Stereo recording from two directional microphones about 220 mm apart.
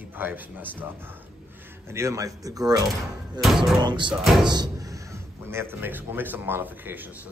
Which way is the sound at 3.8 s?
20° right (ahead or behind).